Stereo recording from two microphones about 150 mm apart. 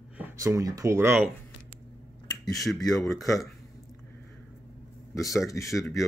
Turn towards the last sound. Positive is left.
turn(degrees=20)  # may be behind; listen again after turning